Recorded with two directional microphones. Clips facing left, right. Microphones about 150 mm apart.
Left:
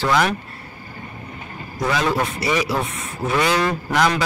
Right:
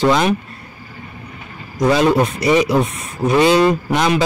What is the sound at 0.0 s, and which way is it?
Speech, 20° right (ahead or behind).